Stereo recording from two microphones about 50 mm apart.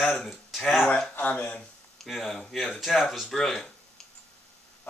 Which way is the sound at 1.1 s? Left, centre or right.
Left.